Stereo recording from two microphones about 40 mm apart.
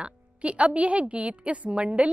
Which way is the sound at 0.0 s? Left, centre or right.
Right.